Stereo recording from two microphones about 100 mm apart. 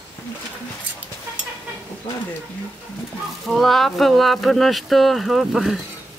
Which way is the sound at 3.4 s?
Centre (ahead or behind).